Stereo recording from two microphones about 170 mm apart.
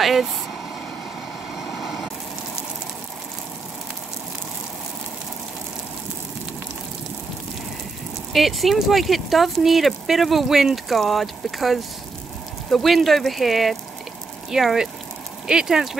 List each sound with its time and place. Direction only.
0.0 s speech: centre (ahead or behind)
1.6 s vehicle: centre (ahead or behind)
8.3 s speech: centre (ahead or behind)